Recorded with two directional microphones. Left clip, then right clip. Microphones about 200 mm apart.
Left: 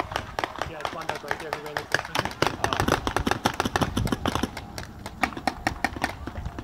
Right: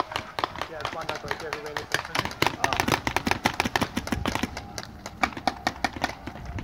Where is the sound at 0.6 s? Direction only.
55° right (ahead or behind).